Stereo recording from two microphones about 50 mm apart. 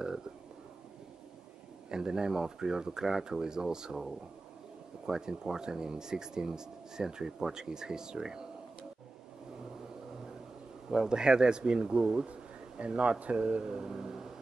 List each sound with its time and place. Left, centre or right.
1.9 s speech: centre
10.9 s speech: centre